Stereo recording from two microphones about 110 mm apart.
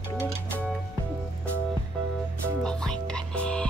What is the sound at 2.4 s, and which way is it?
Music, 5° left (ahead or behind).